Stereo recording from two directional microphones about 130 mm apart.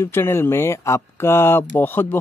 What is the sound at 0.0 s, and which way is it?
Speech, 20° left (ahead or behind).